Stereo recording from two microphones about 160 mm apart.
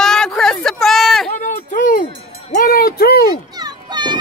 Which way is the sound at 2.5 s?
75° left (ahead or behind).